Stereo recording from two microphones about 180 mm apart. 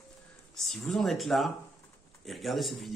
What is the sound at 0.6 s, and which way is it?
Speech, centre (ahead or behind).